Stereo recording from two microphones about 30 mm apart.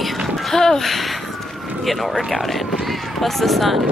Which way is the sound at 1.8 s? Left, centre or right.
Centre.